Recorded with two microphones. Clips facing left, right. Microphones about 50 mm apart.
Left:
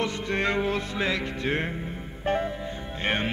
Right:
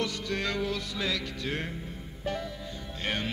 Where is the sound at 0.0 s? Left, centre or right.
Left.